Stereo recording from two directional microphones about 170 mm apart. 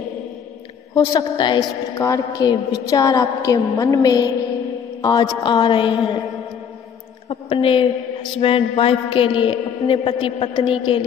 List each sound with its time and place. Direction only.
0.9 s a woman's voice: 25° left (ahead or behind)
7.2 s a woman's voice: 30° left (ahead or behind)